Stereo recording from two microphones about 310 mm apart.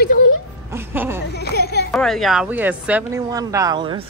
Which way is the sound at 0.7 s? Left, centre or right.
Centre.